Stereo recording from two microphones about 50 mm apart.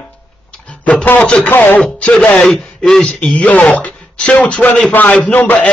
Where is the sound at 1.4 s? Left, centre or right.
Left.